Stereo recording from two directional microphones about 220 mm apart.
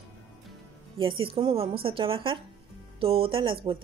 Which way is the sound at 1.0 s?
25° right (ahead or behind).